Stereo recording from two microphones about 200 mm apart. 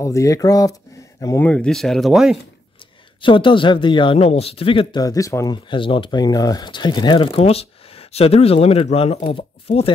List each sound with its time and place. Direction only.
0.0 s speech: 15° left (ahead or behind); by 2.3 s centre (ahead or behind)
3.2 s speech: 25° left (ahead or behind)